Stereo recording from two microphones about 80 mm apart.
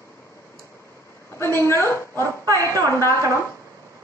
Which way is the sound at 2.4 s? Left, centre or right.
Right.